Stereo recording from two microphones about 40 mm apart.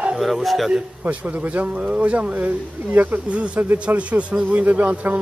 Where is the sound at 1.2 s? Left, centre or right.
Right.